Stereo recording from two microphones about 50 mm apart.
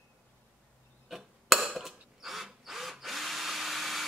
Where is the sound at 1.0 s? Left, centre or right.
Centre.